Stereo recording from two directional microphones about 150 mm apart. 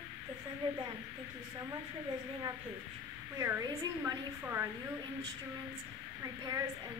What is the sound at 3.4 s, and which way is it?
A woman's voice, 20° right (ahead or behind).